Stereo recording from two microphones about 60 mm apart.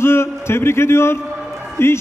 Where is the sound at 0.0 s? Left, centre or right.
Left.